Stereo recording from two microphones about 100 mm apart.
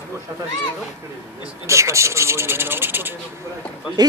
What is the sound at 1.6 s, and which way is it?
Speech, 30° right (ahead or behind).